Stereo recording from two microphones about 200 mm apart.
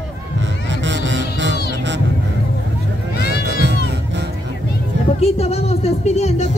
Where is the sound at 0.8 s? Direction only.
65° right (ahead or behind).